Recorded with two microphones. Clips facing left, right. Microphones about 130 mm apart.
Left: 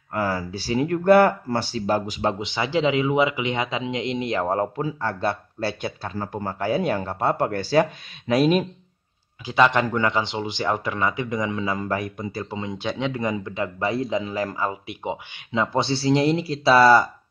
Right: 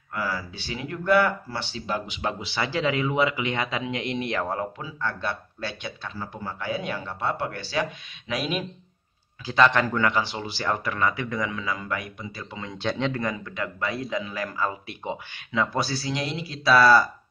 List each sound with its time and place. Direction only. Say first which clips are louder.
0.1 s speech: left 5 dB; 45° left (ahead or behind)
2.3 s speech: left 4 dB; 20° left (ahead or behind)
4.5 s speech: left 7 dB; 40° left (ahead or behind)
9.5 s speech: left 2 dB; 15° left (ahead or behind); by 12.5 s 40° left (ahead or behind)
12.7 s speech: right 1 dB; 10° left (ahead or behind)